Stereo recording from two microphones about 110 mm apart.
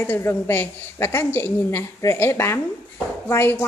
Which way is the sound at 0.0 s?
20° left (ahead or behind).